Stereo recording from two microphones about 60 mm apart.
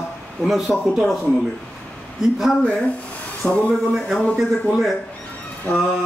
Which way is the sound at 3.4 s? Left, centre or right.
Left.